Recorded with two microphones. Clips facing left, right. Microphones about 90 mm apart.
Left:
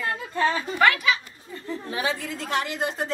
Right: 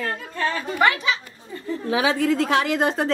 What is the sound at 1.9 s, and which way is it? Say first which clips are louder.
A woman's voice: right 9 dB; 90° right.